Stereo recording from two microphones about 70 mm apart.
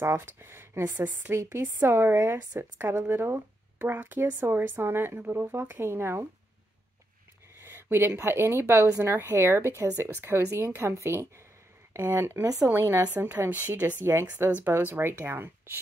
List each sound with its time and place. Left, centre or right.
0.0 s speech: right
7.5 s a woman's voice: right